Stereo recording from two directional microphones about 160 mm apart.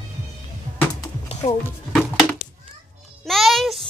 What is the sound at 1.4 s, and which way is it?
Speech, 40° left (ahead or behind).